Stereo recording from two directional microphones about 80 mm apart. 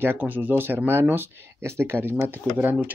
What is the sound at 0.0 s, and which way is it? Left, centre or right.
Speech, right.